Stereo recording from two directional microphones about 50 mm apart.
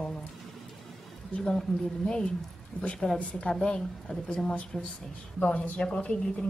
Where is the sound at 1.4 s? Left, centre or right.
Centre.